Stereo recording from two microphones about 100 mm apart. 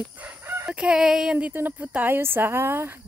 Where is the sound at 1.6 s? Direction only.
20° right (ahead or behind).